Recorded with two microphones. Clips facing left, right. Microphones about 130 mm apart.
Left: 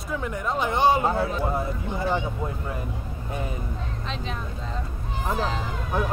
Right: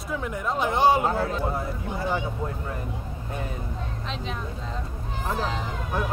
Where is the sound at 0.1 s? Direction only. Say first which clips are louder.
Left 1 dB; centre (ahead or behind).